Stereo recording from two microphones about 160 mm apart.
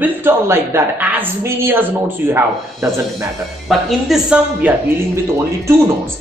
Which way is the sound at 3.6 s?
Centre (ahead or behind).